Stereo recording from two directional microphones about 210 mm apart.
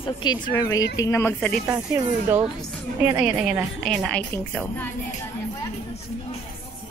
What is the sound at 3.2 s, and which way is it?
A woman's voice, 5° right (ahead or behind).